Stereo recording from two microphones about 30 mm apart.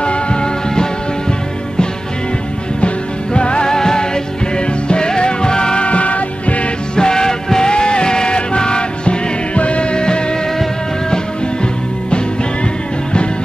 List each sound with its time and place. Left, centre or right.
0.0 s music: left
3.3 s music: left
3.6 s music: centre
5.9 s music: left
7.0 s music: left
7.7 s music: left